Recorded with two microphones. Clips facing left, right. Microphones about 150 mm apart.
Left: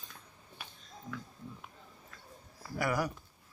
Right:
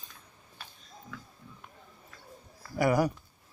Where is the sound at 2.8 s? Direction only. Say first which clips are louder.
Right 7 dB; 25° right (ahead or behind).